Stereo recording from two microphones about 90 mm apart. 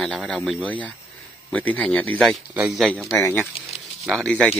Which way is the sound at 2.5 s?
5° right (ahead or behind).